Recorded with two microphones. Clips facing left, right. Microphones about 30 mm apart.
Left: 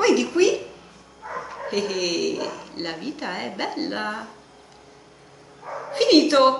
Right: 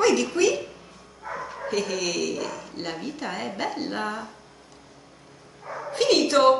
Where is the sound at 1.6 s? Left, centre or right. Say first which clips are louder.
Left 2 dB; centre.